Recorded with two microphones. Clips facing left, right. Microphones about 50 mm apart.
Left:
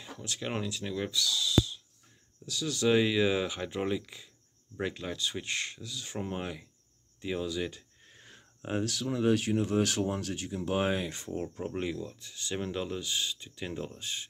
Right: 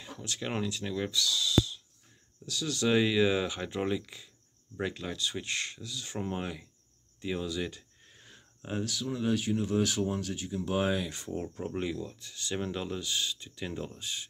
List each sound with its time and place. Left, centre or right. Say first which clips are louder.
0.0 s speech: even; centre
8.1 s a sound: left 2 dB; left
8.8 s speech: left 4 dB; left
10.6 s speech: even; left
11.4 s speech: even; centre
13.9 s speech: even; left